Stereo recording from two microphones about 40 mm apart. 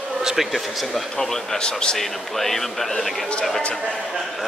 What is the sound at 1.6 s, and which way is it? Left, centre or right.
Speech, left.